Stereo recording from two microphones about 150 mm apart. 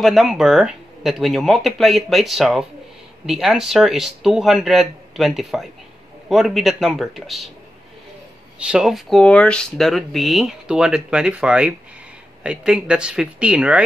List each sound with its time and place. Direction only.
0.0 s speech: centre (ahead or behind)
8.5 s speech: 5° right (ahead or behind)